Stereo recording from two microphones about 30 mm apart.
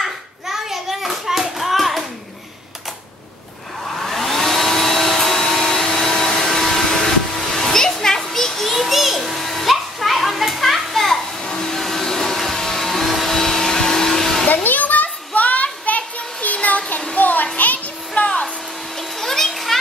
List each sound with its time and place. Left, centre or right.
0.0 s hands: centre
4.0 s hair dryer: centre
6.1 s a sound: centre
8.7 s children playing: centre
11.5 s vacuum cleaner: centre
13.4 s vacuum cleaner: centre
14.5 s children playing: left
17.2 s children playing: left
18.1 s music: left
18.9 s a sound: centre
19.5 s children playing: centre